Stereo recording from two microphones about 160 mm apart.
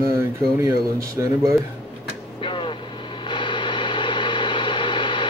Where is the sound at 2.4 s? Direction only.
30° left (ahead or behind).